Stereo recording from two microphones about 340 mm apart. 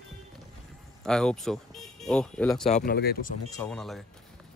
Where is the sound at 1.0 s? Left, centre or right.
Centre.